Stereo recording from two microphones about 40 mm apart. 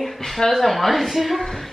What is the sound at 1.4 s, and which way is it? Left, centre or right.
Music, centre.